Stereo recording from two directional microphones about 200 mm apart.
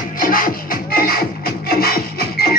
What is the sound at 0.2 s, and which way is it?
Music, 45° left (ahead or behind).